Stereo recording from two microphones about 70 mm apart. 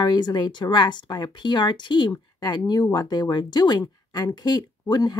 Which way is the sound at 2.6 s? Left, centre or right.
Left.